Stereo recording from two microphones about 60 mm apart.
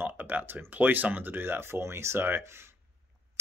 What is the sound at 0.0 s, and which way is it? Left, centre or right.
Speech, right.